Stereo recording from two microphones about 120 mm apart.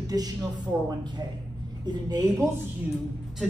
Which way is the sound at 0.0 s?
30° right (ahead or behind).